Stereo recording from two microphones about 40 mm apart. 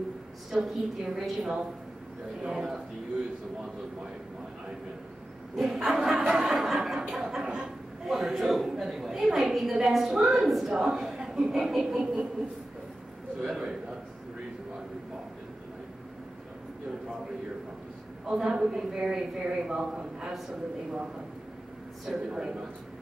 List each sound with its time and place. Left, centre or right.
0.5 s a woman's voice: centre
2.4 s speech: centre
5.6 s a man's voice: centre
13.5 s a man's voice: centre
18.2 s a man's voice: centre
22.3 s a man's voice: centre